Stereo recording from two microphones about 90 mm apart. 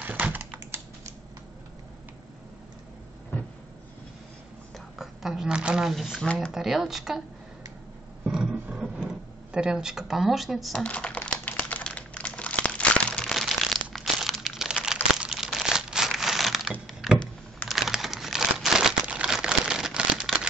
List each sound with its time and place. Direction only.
0.0 s typing: 20° right (ahead or behind)
4.7 s a woman's voice: 5° right (ahead or behind)
8.3 s drawer open or close: 5° right (ahead or behind)
10.8 s speech: 10° left (ahead or behind)
11.2 s crumpling: 15° left (ahead or behind); by 16.7 s centre (ahead or behind)
16.8 s a sound: centre (ahead or behind)